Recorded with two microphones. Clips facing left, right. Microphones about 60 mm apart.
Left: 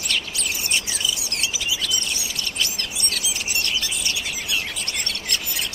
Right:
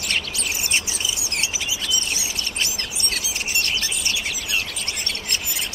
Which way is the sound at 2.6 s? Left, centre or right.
Right.